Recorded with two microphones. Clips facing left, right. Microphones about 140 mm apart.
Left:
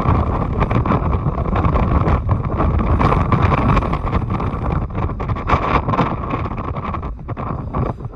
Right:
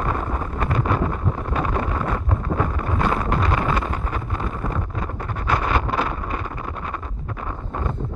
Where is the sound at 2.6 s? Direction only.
65° left (ahead or behind).